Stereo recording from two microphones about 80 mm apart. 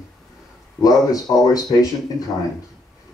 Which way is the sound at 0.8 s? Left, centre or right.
Left.